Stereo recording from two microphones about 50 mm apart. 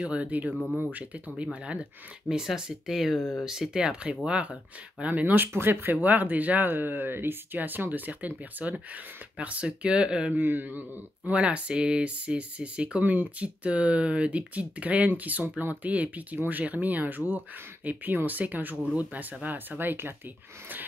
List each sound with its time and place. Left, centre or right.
0.0 s speech: right
2.2 s speech: centre
3.2 s speech: left
3.4 s speech: centre
3.8 s speech: right
5.2 s speech: right; by 10.3 s centre
10.3 s speech: right
11.3 s speech: right
13.0 s speech: right
13.4 s speech: right